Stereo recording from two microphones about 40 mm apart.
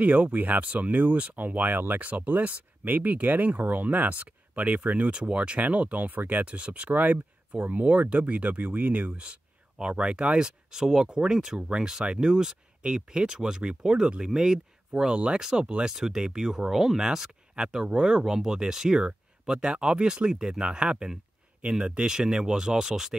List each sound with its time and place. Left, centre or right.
0.0 s speech: right
4.3 s a sound: right
4.7 s speech: right
6.4 s speech: right
6.9 s speech: right
10.7 s speech: centre